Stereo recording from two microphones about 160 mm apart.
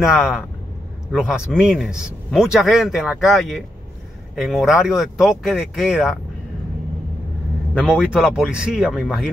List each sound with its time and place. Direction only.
0.1 s speech: centre (ahead or behind)
7.8 s speech: 5° right (ahead or behind)